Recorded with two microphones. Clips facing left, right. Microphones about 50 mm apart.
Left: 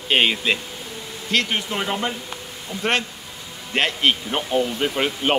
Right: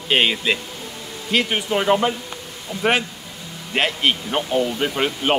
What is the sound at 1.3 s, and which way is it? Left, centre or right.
Speech, centre.